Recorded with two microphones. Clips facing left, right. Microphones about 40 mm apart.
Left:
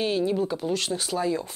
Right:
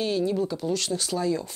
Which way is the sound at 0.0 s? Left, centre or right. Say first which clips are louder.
Left 1 dB; centre.